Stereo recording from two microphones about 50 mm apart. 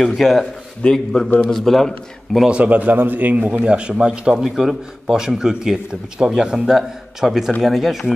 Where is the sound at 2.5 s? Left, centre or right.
Right.